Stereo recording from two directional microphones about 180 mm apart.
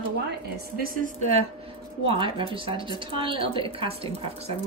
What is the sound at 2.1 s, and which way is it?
A woman's voice, 30° right (ahead or behind).